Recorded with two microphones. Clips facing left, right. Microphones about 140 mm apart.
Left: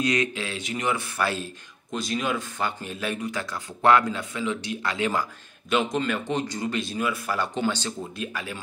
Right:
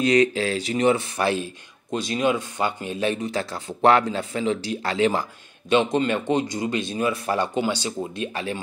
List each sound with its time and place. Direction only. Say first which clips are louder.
0.0 s speech: right 7 dB; 30° right (ahead or behind)
7.5 s speech: right 2 dB; 10° right (ahead or behind)
8.2 s speech: right 5 dB; 30° right (ahead or behind)